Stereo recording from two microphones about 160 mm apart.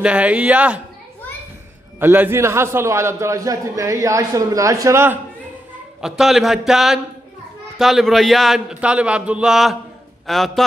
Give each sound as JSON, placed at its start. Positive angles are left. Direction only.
{"t": 0.0, "sound": "a man's voice", "side_deg": -5}
{"t": 2.0, "sound": "a man's voice", "side_deg": -15}
{"t": 5.9, "sound": "speech", "side_deg": -5}